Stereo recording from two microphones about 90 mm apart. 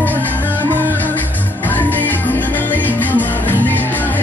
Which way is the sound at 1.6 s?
20° left (ahead or behind).